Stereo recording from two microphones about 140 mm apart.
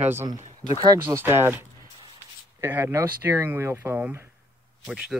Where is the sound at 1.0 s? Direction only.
15° right (ahead or behind).